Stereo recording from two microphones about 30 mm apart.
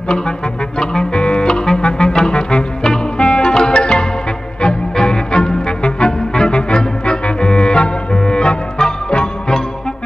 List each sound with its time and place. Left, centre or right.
1.1 s music: left